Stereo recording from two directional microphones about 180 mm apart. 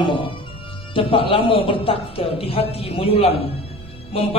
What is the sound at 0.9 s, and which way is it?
A man's voice, 30° left (ahead or behind).